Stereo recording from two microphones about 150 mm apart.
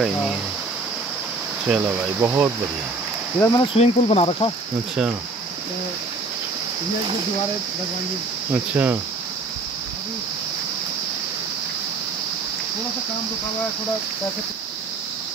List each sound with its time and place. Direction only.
1.7 s speech: 15° right (ahead or behind)
3.3 s speech: 20° left (ahead or behind)
3.7 s speech: 40° left (ahead or behind)
8.5 s speech: 15° right (ahead or behind)